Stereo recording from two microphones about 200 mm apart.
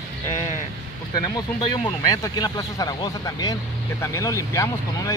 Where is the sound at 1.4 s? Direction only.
25° left (ahead or behind).